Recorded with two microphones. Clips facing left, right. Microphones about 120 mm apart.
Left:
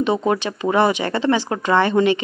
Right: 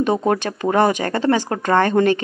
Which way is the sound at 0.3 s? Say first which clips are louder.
Right 1 dB; 50° right (ahead or behind).